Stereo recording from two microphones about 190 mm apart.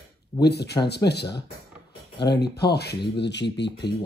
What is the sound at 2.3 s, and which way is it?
Speech, 60° left (ahead or behind).